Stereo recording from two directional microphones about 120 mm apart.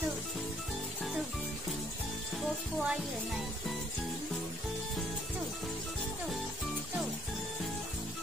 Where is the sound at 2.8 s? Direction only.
5° right (ahead or behind).